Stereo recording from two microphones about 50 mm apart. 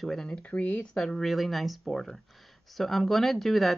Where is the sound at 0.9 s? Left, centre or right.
Centre.